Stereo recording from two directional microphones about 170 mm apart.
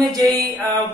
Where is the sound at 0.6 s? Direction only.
20° right (ahead or behind).